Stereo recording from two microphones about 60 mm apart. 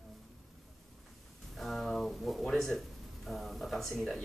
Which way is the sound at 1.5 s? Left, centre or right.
Centre.